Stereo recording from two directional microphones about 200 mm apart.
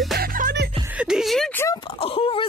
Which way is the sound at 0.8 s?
5° right (ahead or behind).